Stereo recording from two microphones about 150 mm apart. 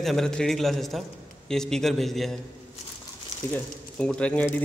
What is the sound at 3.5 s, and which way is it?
Speech, 10° left (ahead or behind).